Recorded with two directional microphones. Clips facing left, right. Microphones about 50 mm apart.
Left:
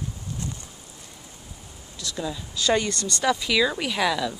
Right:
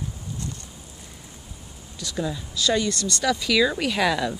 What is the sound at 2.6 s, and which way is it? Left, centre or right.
Speech, left.